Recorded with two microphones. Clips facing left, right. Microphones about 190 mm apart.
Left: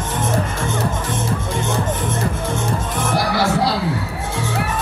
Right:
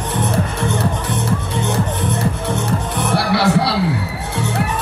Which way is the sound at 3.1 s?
70° right (ahead or behind).